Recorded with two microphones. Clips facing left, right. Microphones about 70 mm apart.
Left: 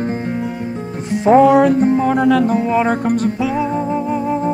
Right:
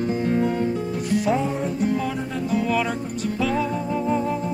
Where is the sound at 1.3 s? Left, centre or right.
Left.